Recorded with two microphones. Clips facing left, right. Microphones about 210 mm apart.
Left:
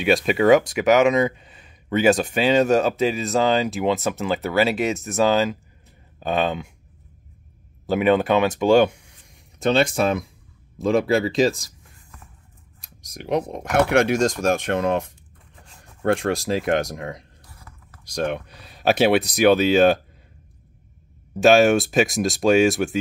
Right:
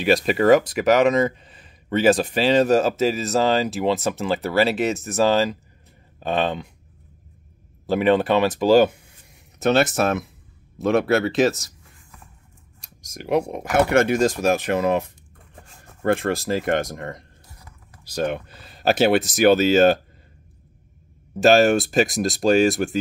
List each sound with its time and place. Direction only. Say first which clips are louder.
0.0 s speech: even; centre (ahead or behind)
7.8 s speech: even; centre (ahead or behind)
12.8 s a sound: right 1 dB; centre (ahead or behind)
13.4 s speech: even; 5° right (ahead or behind)
17.6 s computer keyboard: even; 15° right (ahead or behind)
18.1 s speech: even; centre (ahead or behind)
21.3 s speech: left 1 dB; centre (ahead or behind)